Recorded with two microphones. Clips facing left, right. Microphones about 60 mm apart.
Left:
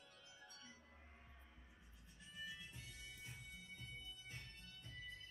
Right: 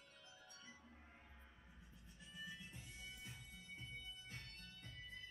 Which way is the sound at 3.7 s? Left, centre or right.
Right.